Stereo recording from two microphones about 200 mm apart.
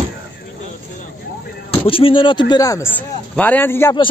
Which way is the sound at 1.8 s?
25° left (ahead or behind).